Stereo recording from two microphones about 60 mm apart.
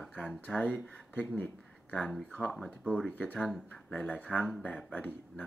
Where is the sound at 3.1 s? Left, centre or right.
Left.